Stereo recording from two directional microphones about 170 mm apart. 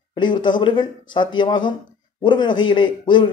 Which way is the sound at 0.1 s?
25° left (ahead or behind).